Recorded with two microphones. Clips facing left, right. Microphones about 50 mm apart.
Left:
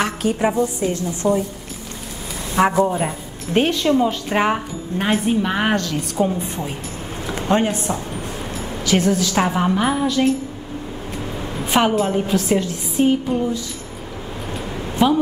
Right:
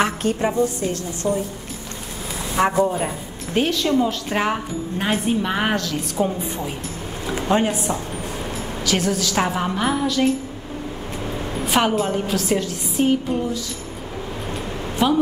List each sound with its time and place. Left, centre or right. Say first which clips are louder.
0.2 s a woman's voice: left 1 dB; centre
0.9 s a woman's voice: left 4 dB; left
2.5 s a woman's voice: left 2 dB; centre
3.5 s a woman's voice: left 2 dB; centre
11.5 s a woman's voice: left 2 dB; centre
14.5 s a sound: left 2 dB; centre